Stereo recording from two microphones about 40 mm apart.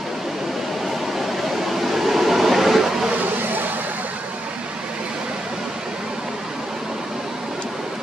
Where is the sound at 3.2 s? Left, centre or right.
Right.